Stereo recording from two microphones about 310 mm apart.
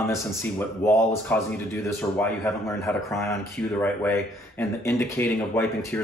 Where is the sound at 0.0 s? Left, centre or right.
Centre.